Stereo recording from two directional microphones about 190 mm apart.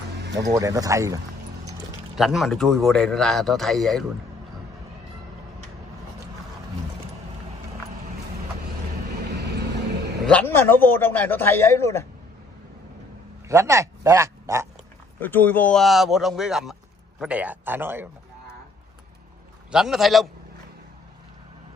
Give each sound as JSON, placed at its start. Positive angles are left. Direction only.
{"t": 0.6, "sound": "speech", "side_deg": -15}
{"t": 2.1, "sound": "a man's voice", "side_deg": 0}
{"t": 9.4, "sound": "vehicle", "side_deg": -60}
{"t": 10.2, "sound": "a man's voice", "side_deg": 10}
{"t": 13.5, "sound": "speech", "side_deg": -15}
{"t": 15.1, "sound": "a man's voice", "side_deg": 10}
{"t": 19.7, "sound": "a man's voice", "side_deg": 0}